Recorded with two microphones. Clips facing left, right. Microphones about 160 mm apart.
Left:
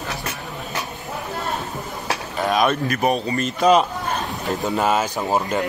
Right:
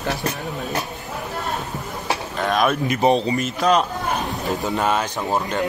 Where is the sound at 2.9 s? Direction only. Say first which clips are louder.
Right 3 dB; 25° right (ahead or behind).